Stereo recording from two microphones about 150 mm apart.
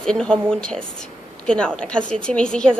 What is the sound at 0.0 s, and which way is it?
A woman's voice, 5° left (ahead or behind).